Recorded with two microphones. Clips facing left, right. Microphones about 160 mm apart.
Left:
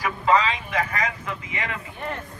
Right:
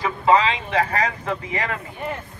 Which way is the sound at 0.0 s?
25° right (ahead or behind).